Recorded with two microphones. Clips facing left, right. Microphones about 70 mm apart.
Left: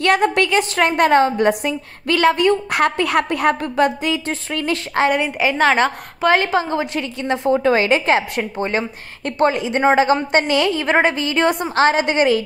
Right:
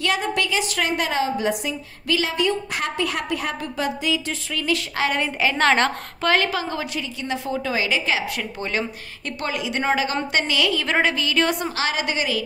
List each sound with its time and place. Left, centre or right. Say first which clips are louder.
0.0 s a woman's voice: left 7 dB; left
5.1 s a woman's voice: left 4 dB; centre
6.2 s a woman's voice: left 5 dB; left
7.0 s a woman's voice: left 6 dB; left